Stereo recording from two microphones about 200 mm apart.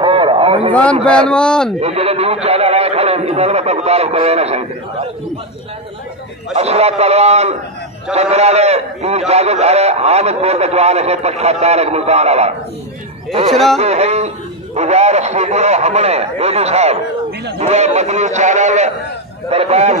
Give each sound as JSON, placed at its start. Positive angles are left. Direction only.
{"t": 0.0, "sound": "a sound", "side_deg": -25}
{"t": 1.1, "sound": "a man's voice", "side_deg": 5}
{"t": 1.8, "sound": "a man's voice", "side_deg": -30}
{"t": 6.5, "sound": "a man's voice", "side_deg": -30}